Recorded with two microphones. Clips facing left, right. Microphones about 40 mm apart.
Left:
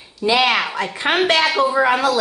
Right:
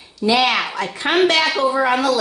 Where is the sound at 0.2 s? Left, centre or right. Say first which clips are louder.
Even; left.